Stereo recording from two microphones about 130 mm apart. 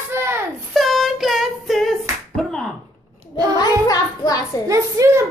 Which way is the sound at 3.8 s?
30° left (ahead or behind).